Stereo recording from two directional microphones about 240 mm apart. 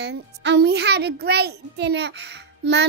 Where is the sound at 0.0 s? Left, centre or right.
Right.